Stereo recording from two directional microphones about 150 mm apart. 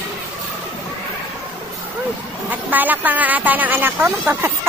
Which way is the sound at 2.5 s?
10° right (ahead or behind).